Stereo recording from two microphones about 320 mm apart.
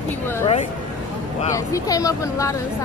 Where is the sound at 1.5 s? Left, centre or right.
Centre.